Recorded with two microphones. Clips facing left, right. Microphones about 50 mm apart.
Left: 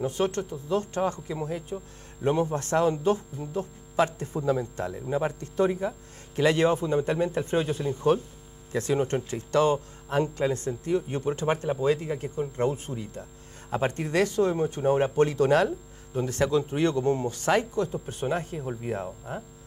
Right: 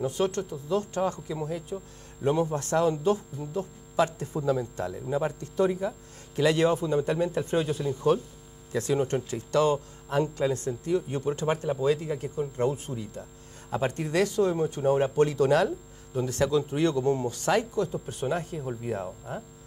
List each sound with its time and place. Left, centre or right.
0.0 s speech: left